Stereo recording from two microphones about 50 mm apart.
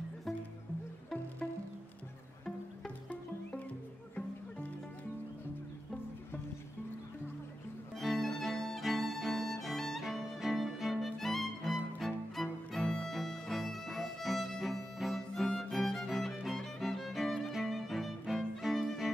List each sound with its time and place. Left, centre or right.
8.0 s violin: centre
9.4 s music: centre
17.5 s violin: centre